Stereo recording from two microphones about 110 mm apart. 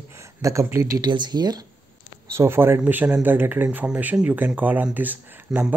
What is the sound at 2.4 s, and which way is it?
Speech, 20° right (ahead or behind).